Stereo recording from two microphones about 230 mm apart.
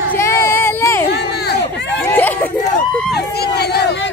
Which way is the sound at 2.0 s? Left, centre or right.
Centre.